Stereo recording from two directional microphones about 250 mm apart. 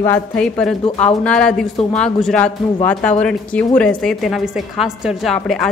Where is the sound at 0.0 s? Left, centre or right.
Centre.